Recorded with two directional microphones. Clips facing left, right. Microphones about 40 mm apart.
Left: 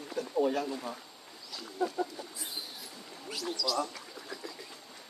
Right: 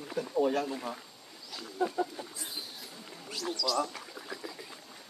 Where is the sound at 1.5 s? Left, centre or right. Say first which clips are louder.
Right 1 dB; right.